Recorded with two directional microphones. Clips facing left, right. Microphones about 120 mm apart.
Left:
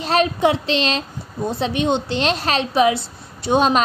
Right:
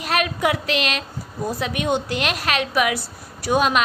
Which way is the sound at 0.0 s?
30° left (ahead or behind).